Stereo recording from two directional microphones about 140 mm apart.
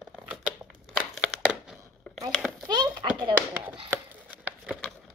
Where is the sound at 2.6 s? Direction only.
30° right (ahead or behind).